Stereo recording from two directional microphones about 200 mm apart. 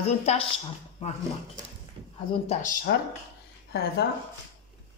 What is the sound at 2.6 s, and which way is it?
Speech, 45° left (ahead or behind).